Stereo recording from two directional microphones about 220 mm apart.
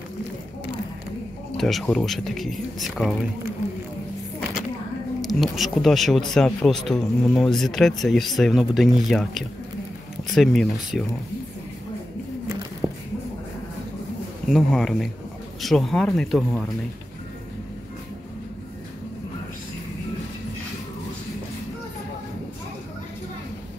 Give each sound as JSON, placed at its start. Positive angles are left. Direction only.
{"t": 1.6, "sound": "speech", "side_deg": 0}
{"t": 5.2, "sound": "speech", "side_deg": 0}
{"t": 10.3, "sound": "speech", "side_deg": 0}
{"t": 12.8, "sound": "a sound", "side_deg": -20}
{"t": 14.5, "sound": "speech", "side_deg": 0}